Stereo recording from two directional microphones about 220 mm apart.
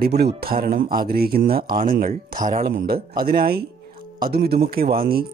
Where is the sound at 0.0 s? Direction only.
45° right (ahead or behind).